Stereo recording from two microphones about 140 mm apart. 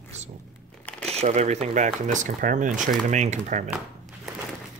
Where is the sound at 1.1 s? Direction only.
50° right (ahead or behind); by 2.7 s 70° right (ahead or behind).